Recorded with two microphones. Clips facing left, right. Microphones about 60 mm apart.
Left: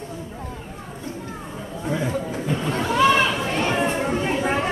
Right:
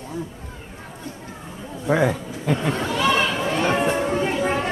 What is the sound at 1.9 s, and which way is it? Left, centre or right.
Speech, right.